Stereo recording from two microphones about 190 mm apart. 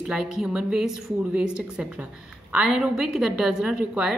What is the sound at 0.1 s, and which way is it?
A woman's voice, centre (ahead or behind).